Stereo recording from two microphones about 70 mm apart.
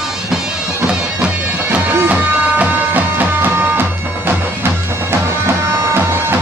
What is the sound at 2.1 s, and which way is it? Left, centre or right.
Music, right.